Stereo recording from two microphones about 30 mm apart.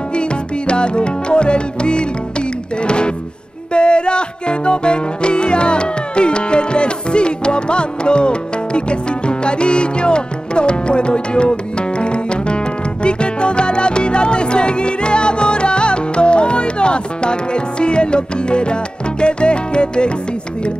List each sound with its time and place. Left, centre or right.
0.1 s music: left